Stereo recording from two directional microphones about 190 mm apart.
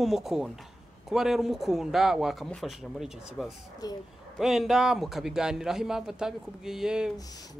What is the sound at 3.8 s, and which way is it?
Speech, 20° left (ahead or behind).